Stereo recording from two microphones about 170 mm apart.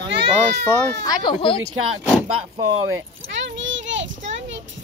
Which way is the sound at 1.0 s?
25° left (ahead or behind).